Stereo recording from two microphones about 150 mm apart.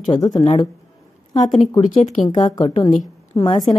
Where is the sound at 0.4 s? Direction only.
50° left (ahead or behind).